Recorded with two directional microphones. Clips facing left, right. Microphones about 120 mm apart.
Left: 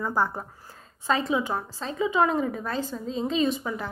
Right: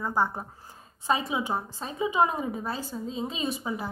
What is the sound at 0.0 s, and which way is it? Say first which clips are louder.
A woman's voice: left 1 dB; 20° right (ahead or behind).